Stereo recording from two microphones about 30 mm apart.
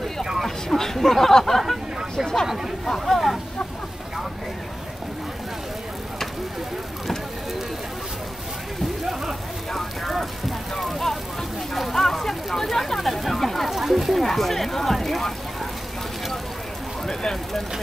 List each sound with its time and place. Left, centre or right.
0.7 s speech: centre
2.4 s speech: centre
3.1 s speech: centre
9.7 s vehicle: centre
10.8 s a sound: centre
13.7 s a sound: centre
14.2 s speech: centre
17.0 s vehicle: centre